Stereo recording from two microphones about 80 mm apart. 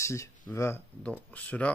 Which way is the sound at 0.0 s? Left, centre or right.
Left.